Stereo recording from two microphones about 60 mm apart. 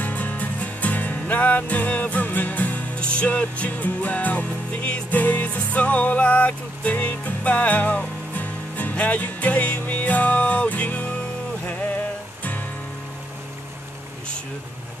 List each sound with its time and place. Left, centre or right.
0.0 s music: left